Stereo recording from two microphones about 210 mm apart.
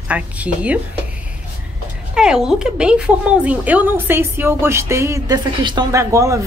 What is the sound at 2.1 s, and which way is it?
Speech, 5° right (ahead or behind).